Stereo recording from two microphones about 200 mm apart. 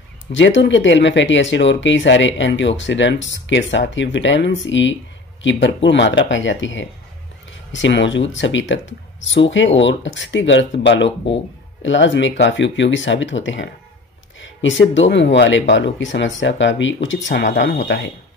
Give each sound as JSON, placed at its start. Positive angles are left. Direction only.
{"t": 0.3, "sound": "speech", "side_deg": 65}